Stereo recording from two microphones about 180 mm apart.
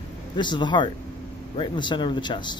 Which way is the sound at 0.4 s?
25° left (ahead or behind).